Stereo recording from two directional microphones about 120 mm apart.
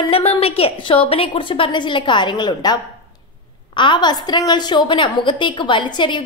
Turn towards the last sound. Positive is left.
turn(degrees=40)  # may be behind; listen again after turning